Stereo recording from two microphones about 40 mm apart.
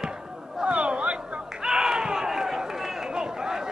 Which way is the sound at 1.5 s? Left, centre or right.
Centre.